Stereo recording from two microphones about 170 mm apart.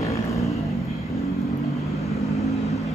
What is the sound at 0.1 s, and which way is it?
Vehicle, 20° left (ahead or behind).